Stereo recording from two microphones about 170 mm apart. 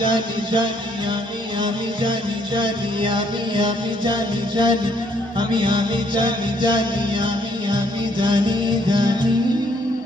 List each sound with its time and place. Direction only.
0.0 s music: 30° right (ahead or behind)